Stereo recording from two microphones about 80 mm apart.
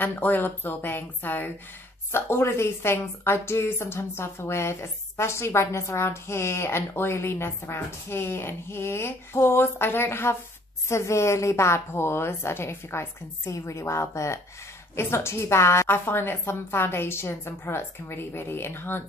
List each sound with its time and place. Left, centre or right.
0.0 s a woman's voice: left